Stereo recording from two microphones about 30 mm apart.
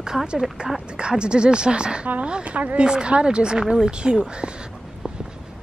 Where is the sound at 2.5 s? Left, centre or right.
Right.